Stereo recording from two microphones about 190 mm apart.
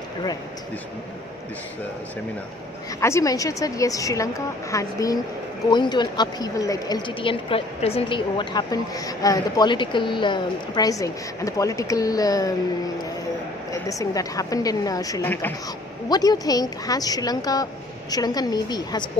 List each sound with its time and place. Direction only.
3.0 s a woman's voice: 15° left (ahead or behind)
13.7 s a woman's voice: 15° left (ahead or behind)